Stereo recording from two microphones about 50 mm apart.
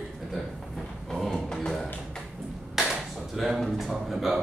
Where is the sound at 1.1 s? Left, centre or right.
Centre.